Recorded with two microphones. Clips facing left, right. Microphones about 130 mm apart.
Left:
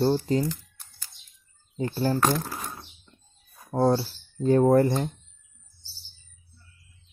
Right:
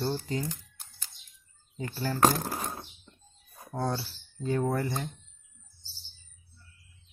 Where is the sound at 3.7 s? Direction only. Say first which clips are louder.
Left 10 dB; 35° left (ahead or behind).